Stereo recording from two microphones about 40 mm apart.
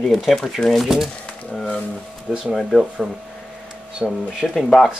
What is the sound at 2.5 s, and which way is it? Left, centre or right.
Speech, centre.